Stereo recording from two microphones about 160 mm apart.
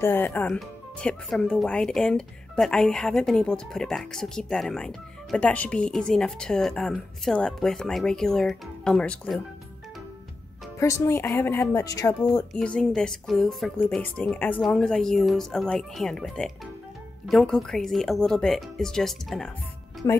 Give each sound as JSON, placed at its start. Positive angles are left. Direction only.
{"t": 0.0, "sound": "speech", "side_deg": 10}
{"t": 10.8, "sound": "a woman's voice", "side_deg": 15}
{"t": 12.5, "sound": "speech", "side_deg": 5}
{"t": 20.0, "sound": "speech", "side_deg": 20}